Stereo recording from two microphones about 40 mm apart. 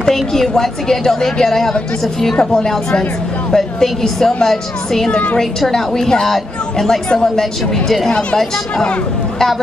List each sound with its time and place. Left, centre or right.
0.0 s a woman's voice: centre
7.1 s speech: centre